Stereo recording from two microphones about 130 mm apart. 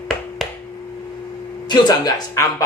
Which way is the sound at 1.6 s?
30° left (ahead or behind).